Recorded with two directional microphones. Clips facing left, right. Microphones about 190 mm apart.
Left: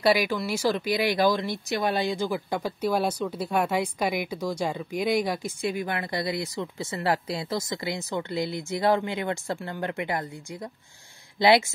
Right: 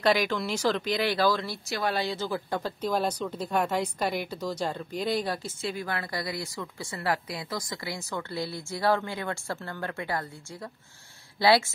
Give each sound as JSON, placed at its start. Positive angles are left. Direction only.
{"t": 0.0, "sound": "speech", "side_deg": 10}